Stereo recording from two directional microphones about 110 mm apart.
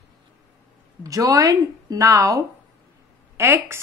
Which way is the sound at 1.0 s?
30° right (ahead or behind).